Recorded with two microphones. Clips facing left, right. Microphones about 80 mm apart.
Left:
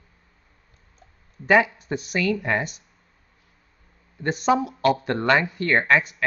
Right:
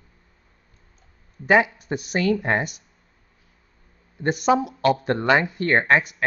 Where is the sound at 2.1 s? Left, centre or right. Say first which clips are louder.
Right 2 dB; right.